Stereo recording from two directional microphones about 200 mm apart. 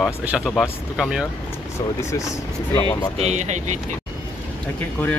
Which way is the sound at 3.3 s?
35° right (ahead or behind).